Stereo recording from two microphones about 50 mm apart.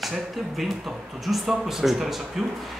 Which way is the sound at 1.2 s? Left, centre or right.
Centre.